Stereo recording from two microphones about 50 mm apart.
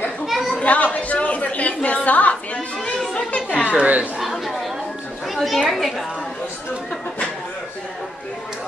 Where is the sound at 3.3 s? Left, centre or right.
Left.